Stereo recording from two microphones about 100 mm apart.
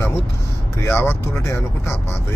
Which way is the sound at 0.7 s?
25° left (ahead or behind).